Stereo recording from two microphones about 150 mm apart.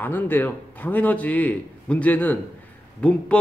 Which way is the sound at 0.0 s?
15° left (ahead or behind).